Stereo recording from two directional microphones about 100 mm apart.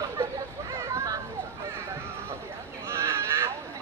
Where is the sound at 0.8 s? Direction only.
30° right (ahead or behind).